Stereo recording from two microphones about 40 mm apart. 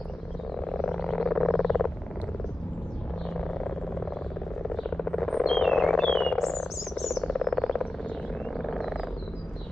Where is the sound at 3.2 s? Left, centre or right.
Centre.